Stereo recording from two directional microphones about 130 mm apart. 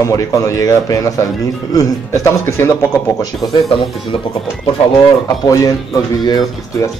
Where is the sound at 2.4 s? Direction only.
20° left (ahead or behind).